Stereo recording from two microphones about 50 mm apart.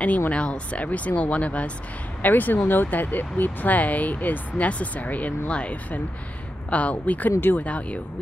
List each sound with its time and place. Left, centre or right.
0.3 s speech: left
2.2 s speech: left
7.6 s speech: left